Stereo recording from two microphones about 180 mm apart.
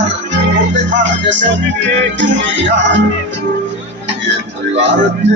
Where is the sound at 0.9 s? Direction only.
80° right.